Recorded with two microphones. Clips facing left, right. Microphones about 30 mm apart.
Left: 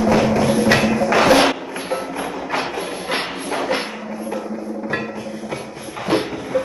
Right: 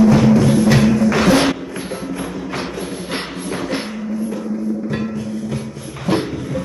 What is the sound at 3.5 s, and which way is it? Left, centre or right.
Music, centre.